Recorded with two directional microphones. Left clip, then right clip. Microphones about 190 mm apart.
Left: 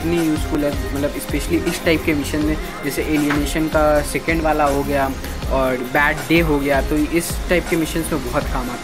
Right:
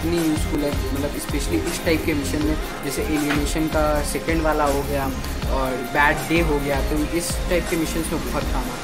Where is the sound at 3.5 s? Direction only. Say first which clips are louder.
Left 7 dB; 15° left (ahead or behind).